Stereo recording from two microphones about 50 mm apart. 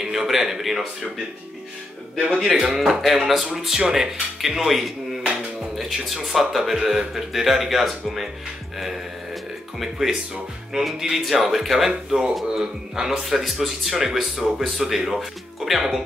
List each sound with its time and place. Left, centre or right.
0.0 s a man's voice: centre
2.3 s a man's voice: centre
8.7 s music: centre
10.3 s speech: centre
12.1 s a man's voice: centre